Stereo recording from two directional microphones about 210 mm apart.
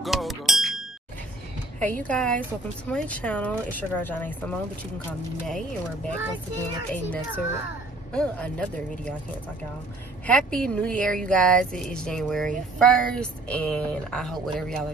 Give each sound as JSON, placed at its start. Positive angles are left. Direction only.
{"t": 0.0, "sound": "music", "side_deg": 0}
{"t": 1.8, "sound": "speech", "side_deg": 5}
{"t": 6.9, "sound": "speech", "side_deg": 5}
{"t": 10.2, "sound": "speech", "side_deg": 5}